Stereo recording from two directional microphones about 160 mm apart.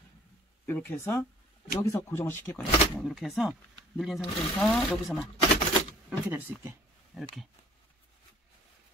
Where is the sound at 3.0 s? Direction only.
Centre (ahead or behind).